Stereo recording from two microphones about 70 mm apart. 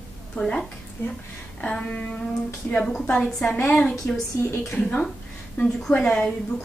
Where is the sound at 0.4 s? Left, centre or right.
Centre.